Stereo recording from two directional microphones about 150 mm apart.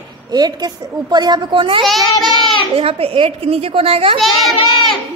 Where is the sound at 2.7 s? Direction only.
40° right (ahead or behind).